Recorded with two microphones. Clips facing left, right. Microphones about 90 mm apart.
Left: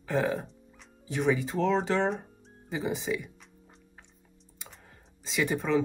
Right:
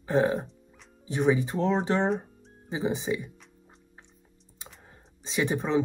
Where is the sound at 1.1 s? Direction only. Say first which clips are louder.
Right 3 dB; 15° right (ahead or behind).